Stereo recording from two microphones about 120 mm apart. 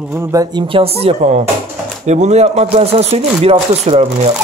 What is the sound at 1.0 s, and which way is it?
Speech, 65° right (ahead or behind).